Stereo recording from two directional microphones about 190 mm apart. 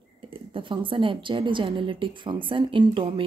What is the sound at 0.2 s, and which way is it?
Speech, 30° right (ahead or behind).